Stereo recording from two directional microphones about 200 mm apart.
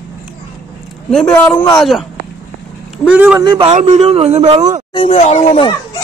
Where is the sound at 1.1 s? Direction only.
5° left (ahead or behind).